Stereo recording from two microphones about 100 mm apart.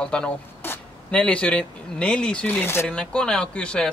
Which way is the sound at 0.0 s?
10° left (ahead or behind).